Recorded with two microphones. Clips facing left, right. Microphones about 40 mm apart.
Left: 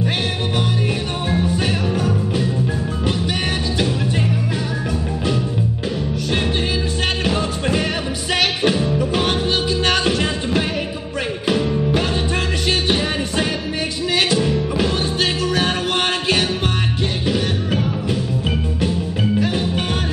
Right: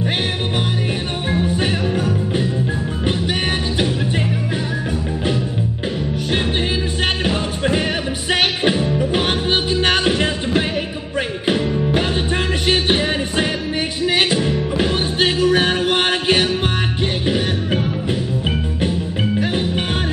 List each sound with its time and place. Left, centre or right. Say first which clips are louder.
1.3 s music: right 1 dB; centre
7.2 s music: right 1 dB; centre
12.6 s music: right 3 dB; right
19.4 s music: even; centre